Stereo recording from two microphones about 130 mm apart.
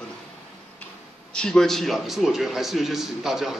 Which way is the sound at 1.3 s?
5° left (ahead or behind).